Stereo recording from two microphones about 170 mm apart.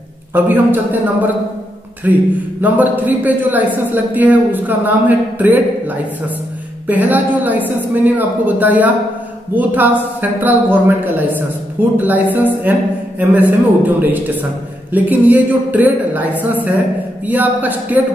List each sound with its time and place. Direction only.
0.3 s a man's voice: 10° right (ahead or behind)